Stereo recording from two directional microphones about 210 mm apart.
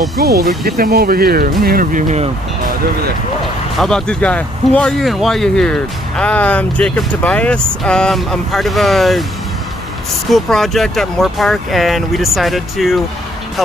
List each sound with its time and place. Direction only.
0.2 s speech: 50° right (ahead or behind)
3.8 s speech: 5° left (ahead or behind)
10.3 s speech: centre (ahead or behind)